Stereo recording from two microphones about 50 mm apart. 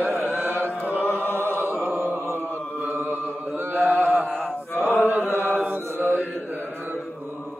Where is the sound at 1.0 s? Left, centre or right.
Left.